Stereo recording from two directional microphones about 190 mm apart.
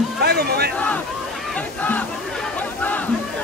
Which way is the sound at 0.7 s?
5° left (ahead or behind).